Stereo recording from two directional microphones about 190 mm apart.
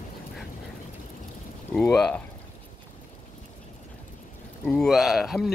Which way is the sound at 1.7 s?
5° left (ahead or behind).